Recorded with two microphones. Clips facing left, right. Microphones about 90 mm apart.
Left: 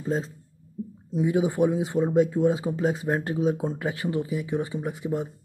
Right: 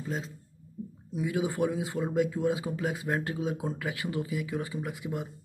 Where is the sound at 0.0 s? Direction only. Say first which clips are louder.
Left 8 dB; 35° left (ahead or behind).